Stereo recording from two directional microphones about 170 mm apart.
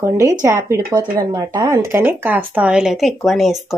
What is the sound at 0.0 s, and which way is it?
Speech, 20° right (ahead or behind).